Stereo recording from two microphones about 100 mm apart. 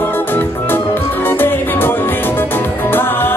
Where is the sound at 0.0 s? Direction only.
20° left (ahead or behind).